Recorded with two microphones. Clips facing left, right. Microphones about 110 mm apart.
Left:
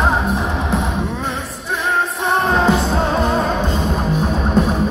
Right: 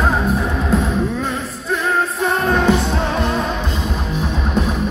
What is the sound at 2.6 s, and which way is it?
Music, 35° left (ahead or behind).